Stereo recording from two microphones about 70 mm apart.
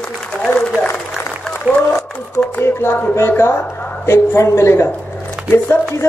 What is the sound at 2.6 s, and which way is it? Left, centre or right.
A woman's voice, left.